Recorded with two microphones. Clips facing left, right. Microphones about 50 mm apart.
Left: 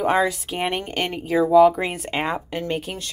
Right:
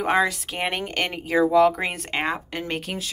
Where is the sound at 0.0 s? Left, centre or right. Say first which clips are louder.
Left 1 dB; centre.